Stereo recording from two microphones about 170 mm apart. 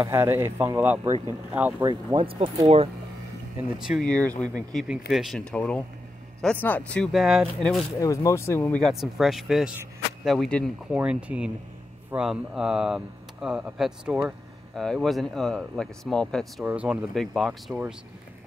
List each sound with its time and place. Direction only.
0.0 s speech: 15° right (ahead or behind)
1.8 s speech: 25° right (ahead or behind)
3.7 s speech: 5° right (ahead or behind)
4.1 s speech: 10° left (ahead or behind)
4.7 s speech: 5° right (ahead or behind)
8.0 s speech: 20° left (ahead or behind)
8.8 s speech: centre (ahead or behind)
16.6 s speech: 5° right (ahead or behind)